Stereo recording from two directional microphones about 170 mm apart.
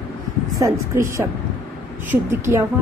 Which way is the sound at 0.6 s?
15° right (ahead or behind).